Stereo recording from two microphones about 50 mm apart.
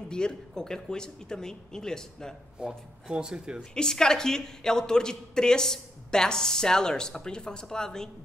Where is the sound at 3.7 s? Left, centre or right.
Centre.